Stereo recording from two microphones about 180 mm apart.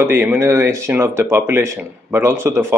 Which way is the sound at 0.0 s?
10° right (ahead or behind).